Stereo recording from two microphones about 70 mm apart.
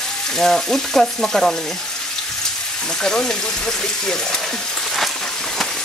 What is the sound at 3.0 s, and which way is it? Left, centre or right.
Speech, centre.